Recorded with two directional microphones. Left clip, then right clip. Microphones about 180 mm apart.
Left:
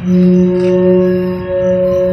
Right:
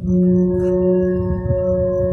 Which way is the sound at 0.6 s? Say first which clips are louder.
Left 7 dB; 5° right (ahead or behind).